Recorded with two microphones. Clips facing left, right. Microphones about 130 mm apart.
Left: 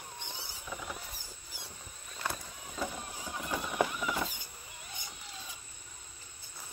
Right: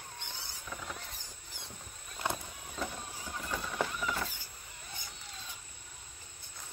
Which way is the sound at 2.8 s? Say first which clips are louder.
Left 2 dB; 5° left (ahead or behind).